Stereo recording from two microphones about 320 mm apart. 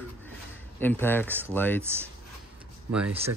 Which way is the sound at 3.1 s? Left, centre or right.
Centre.